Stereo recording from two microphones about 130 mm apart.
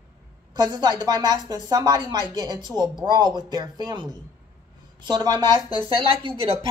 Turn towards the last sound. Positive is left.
turn(degrees=-45)  # may be behind; listen again after turning